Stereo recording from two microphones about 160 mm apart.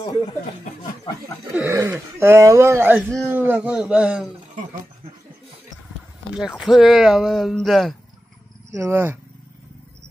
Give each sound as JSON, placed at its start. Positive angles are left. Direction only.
{"t": 1.5, "sound": "speech", "side_deg": -15}
{"t": 6.3, "sound": "speech", "side_deg": -5}
{"t": 8.7, "sound": "speech", "side_deg": -15}